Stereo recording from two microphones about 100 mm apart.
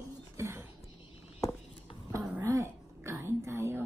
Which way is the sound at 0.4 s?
25° right (ahead or behind).